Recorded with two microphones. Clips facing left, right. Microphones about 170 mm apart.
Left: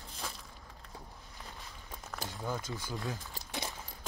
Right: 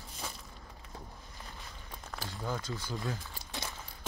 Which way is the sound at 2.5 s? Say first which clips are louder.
Right 1 dB; 15° left (ahead or behind).